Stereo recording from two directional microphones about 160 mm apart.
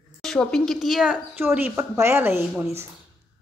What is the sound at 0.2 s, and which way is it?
A woman's voice, 5° left (ahead or behind).